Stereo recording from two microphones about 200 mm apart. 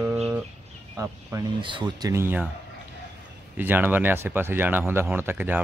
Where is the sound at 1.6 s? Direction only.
25° right (ahead or behind).